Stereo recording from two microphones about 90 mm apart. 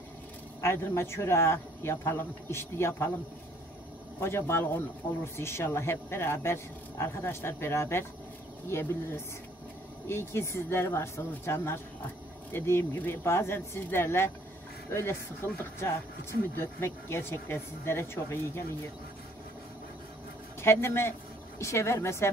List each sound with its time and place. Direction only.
0.6 s speech: 30° left (ahead or behind)
4.2 s speech: 30° left (ahead or behind)
20.6 s a woman's voice: 30° left (ahead or behind)